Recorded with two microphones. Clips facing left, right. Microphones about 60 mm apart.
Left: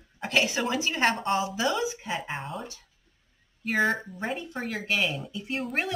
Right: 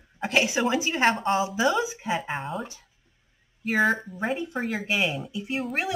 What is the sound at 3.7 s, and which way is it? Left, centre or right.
Speech, centre.